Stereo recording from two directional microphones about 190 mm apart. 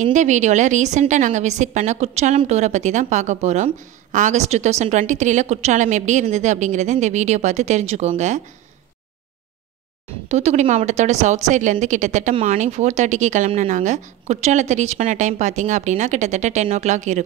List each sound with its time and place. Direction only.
0.0 s a woman's voice: 40° right (ahead or behind)
10.2 s a woman's voice: 35° right (ahead or behind)